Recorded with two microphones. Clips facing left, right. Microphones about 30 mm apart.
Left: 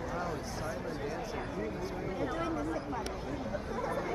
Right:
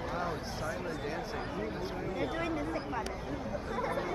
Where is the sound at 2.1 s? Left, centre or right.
Right.